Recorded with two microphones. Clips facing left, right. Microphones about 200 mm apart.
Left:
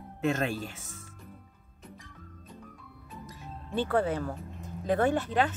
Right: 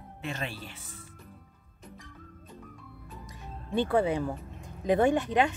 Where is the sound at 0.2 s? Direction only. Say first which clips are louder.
Left 8 dB; 45° left (ahead or behind).